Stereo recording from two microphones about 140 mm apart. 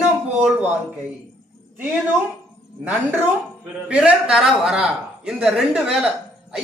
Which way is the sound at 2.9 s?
15° right (ahead or behind).